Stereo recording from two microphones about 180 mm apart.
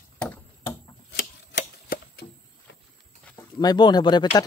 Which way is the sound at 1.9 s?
55° left (ahead or behind).